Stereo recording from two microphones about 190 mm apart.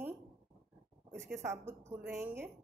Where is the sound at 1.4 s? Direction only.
15° right (ahead or behind).